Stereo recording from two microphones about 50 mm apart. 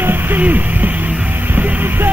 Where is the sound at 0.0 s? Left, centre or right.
Right.